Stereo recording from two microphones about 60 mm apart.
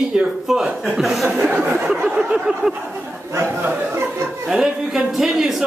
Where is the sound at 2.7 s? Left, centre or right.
Right.